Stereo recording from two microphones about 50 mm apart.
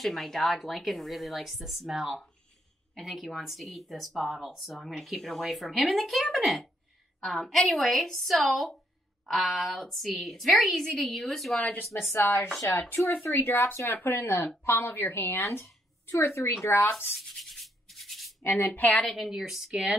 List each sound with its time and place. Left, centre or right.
0.0 s speech: centre
12.1 s speech: left
12.9 s a woman's voice: left
15.6 s a woman's voice: left
17.1 s rub: centre
18.4 s a woman's voice: left
19.0 s speech: centre